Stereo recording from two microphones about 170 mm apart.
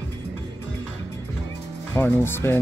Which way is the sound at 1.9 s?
15° left (ahead or behind).